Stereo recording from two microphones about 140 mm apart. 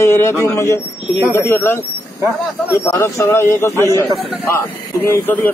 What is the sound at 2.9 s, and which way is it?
A man's voice, 20° left (ahead or behind).